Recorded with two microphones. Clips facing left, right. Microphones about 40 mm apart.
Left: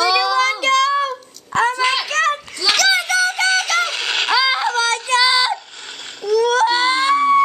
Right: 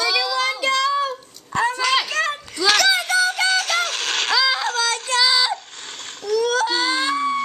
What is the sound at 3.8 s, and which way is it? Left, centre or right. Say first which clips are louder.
Child singing: left 3 dB; left.